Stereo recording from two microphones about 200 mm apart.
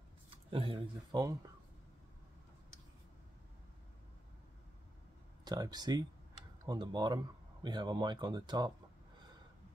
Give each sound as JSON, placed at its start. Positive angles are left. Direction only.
{"t": 0.5, "sound": "speech", "side_deg": -25}
{"t": 5.4, "sound": "speech", "side_deg": -20}